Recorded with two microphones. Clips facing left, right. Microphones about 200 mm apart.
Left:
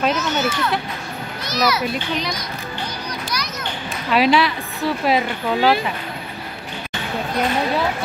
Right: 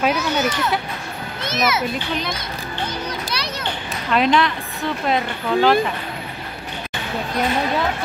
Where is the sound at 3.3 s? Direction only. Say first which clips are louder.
Even; 30° right (ahead or behind).